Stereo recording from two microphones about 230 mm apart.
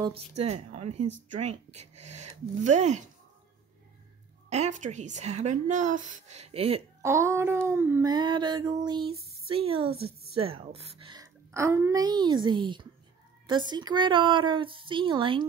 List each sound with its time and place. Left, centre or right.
0.0 s a woman's voice: right
4.5 s a woman's voice: right
7.0 s a sound: centre
9.5 s a woman's voice: right